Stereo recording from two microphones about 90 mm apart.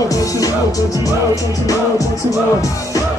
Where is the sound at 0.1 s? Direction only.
40° left (ahead or behind).